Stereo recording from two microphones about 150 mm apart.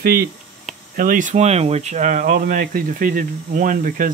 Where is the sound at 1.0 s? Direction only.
60° right (ahead or behind).